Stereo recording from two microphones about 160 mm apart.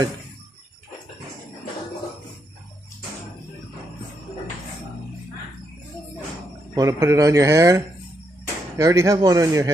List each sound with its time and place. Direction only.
6.7 s speech: 20° right (ahead or behind)